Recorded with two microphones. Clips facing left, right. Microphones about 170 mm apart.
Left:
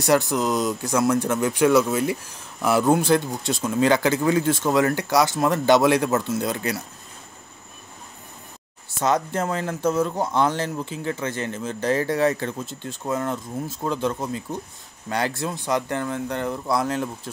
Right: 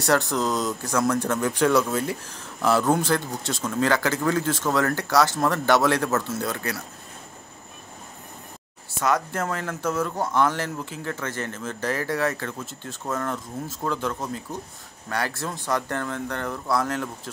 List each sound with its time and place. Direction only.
0.0 s speech: 10° left (ahead or behind)
9.0 s speech: 20° left (ahead or behind)